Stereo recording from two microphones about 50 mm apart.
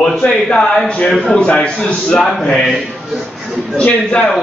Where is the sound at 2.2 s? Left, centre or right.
Centre.